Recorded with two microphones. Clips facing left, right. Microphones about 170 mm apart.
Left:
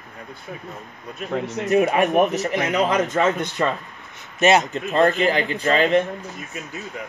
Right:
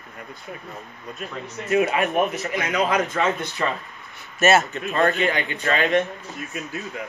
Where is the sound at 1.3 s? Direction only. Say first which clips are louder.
Left 8 dB; 90° left.